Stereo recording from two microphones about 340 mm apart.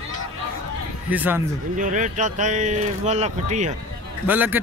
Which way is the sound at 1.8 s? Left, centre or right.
Right.